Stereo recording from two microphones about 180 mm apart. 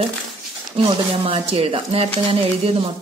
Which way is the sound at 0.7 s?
30° right (ahead or behind).